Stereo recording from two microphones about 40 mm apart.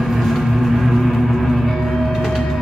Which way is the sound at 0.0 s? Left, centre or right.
Centre.